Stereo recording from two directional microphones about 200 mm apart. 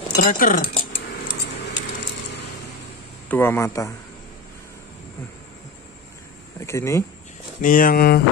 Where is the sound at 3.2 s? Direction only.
10° left (ahead or behind).